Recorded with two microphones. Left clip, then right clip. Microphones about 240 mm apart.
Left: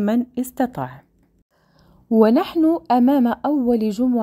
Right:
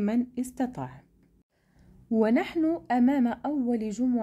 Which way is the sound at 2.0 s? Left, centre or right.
Left.